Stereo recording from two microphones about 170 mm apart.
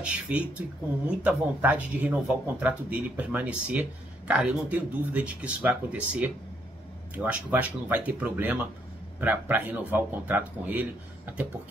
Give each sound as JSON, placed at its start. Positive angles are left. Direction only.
{"t": 0.0, "sound": "speech", "side_deg": -10}